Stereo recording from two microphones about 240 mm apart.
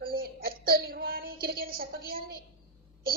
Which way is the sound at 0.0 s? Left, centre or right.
Right.